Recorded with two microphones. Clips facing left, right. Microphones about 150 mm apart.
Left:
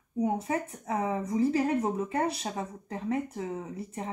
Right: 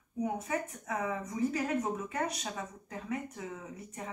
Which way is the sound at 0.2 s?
30° left (ahead or behind).